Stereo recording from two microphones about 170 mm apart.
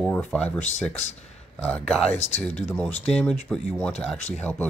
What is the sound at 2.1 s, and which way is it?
Speech, 40° left (ahead or behind).